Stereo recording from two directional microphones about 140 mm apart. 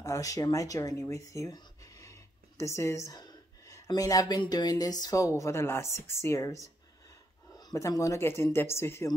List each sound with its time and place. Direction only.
0.0 s speech: 25° left (ahead or behind)